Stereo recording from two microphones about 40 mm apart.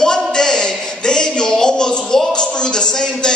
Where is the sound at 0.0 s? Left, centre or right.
Centre.